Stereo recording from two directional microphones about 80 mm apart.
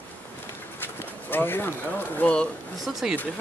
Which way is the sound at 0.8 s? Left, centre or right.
Left.